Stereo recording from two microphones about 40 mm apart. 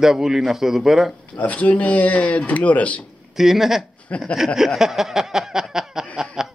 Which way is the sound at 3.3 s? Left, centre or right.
Centre.